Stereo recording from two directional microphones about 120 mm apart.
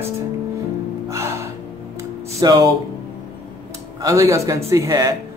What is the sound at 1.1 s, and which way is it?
Gasp, 25° right (ahead or behind).